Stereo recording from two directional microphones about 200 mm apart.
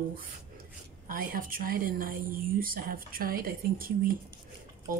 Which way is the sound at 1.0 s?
45° right (ahead or behind).